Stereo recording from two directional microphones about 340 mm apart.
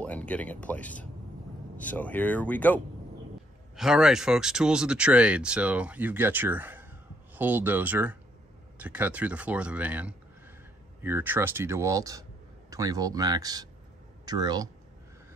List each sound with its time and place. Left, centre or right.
0.0 s speech: centre